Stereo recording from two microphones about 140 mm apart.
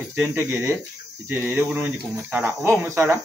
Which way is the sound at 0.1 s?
15° right (ahead or behind).